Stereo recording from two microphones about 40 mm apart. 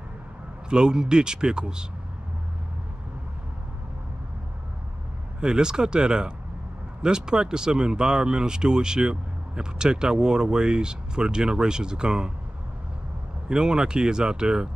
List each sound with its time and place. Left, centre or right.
0.7 s speech: centre
5.4 s speech: centre
13.5 s speech: centre